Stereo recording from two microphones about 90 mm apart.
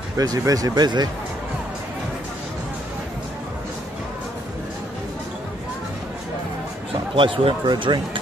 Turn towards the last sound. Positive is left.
turn(degrees=-60)  # may be behind; listen again after turning